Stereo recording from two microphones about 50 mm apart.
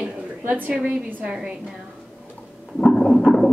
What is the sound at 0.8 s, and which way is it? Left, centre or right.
Speech, centre.